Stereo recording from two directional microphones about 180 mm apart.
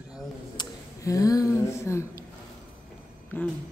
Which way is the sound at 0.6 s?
20° left (ahead or behind).